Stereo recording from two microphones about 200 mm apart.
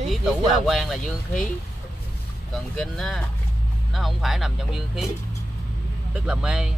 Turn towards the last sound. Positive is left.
turn(degrees=-5)  # may be behind; listen again after turning